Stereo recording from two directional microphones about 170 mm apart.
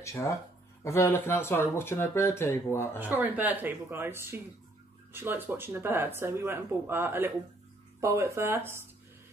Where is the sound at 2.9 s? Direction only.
10° right (ahead or behind).